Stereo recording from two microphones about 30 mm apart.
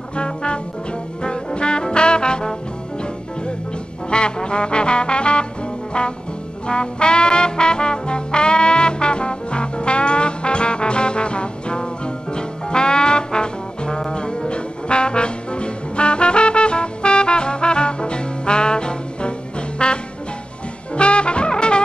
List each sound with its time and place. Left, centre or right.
0.1 s music: left
1.2 s trombone: left
4.1 s music: left
5.9 s trombone: left
6.7 s music: left
20.9 s brass instrument: left